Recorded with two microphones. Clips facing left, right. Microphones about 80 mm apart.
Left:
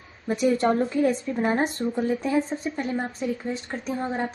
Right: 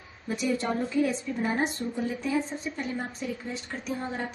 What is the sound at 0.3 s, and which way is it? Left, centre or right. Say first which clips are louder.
A woman's voice: left 7 dB; left.